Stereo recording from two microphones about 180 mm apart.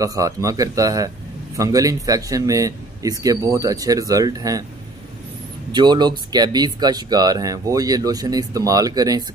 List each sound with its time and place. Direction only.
0.0 s speech: 20° right (ahead or behind)
5.7 s speech: 25° right (ahead or behind)